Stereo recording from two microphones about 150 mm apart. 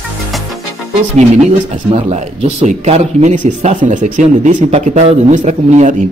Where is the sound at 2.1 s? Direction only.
45° right (ahead or behind).